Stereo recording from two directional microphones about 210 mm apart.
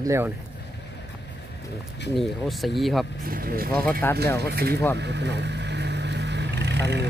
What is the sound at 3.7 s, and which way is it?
Speech, 5° left (ahead or behind).